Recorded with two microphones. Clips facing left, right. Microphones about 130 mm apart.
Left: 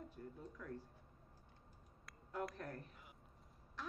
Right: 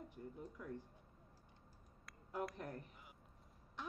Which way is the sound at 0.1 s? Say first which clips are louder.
Right 1 dB; 15° right (ahead or behind).